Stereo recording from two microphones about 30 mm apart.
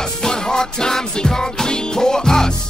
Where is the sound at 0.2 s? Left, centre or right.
Left.